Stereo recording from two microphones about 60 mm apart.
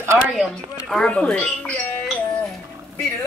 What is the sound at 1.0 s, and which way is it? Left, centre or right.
Speech, centre.